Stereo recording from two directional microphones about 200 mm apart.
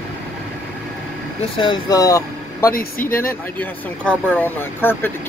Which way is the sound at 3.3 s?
10° left (ahead or behind).